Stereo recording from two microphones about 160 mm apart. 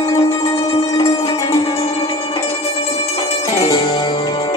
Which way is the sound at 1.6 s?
35° left (ahead or behind).